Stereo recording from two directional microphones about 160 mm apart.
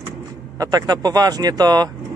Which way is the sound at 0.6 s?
25° right (ahead or behind).